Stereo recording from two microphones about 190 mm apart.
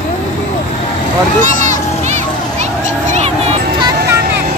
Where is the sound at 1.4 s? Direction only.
40° right (ahead or behind).